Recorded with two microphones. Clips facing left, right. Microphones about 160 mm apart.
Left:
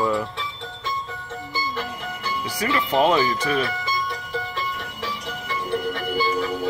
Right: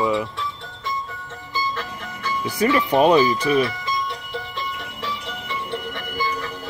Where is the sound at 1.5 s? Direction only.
10° left (ahead or behind).